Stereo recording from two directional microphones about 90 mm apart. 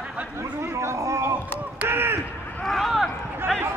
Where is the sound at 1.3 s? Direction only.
25° right (ahead or behind).